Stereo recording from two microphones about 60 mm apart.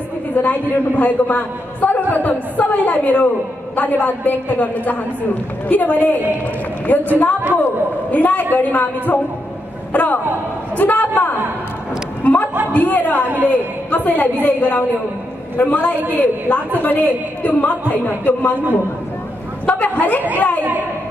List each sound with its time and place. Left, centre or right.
0.4 s a man's voice: left
10.8 s a sound: left
12.7 s a man's voice: left
19.6 s a woman's voice: left